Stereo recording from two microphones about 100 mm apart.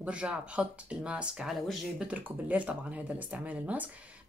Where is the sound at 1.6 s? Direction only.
Centre (ahead or behind).